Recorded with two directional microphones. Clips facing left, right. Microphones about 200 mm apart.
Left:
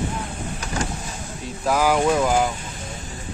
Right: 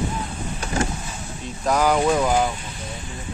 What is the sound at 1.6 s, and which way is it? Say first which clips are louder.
Speech: even; 5° left (ahead or behind).